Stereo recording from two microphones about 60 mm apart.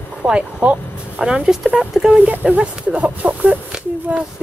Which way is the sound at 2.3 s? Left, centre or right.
Right.